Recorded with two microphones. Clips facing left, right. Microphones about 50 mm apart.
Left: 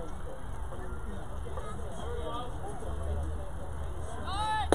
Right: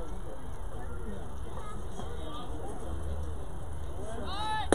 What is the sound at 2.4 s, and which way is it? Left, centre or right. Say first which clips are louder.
Vehicle: left 1 dB; left.